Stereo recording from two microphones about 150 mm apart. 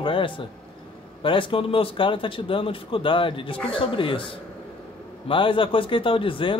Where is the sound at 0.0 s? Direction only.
35° left (ahead or behind).